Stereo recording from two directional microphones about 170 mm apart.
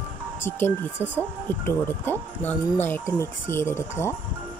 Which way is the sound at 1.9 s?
10° left (ahead or behind).